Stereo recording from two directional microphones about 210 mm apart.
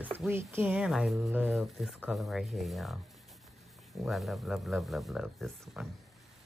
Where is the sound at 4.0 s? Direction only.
Centre (ahead or behind).